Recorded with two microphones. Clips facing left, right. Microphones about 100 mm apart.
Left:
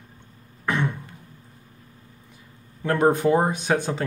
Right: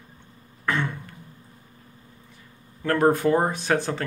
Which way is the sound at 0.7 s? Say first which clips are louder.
Left 1 dB; 20° left (ahead or behind).